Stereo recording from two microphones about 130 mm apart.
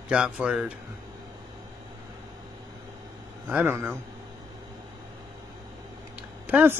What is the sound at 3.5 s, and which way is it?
Speech, 15° right (ahead or behind).